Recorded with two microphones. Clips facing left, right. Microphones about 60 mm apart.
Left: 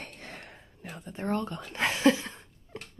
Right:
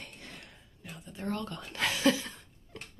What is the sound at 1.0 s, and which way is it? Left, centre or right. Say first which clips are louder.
Speech: left 5 dB; left.